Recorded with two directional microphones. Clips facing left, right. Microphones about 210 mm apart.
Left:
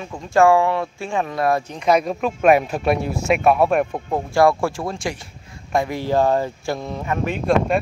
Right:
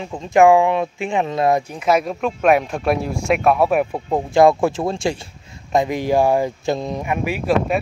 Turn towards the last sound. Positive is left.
turn(degrees=-5)  # may be behind; listen again after turning